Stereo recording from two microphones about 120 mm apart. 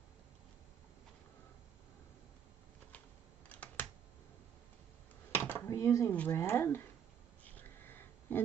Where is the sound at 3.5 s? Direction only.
10° left (ahead or behind).